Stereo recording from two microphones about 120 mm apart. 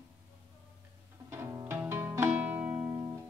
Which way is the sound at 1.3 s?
20° right (ahead or behind).